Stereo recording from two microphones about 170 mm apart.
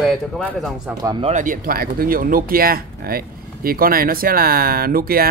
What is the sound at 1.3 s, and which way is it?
Speech, 50° right (ahead or behind).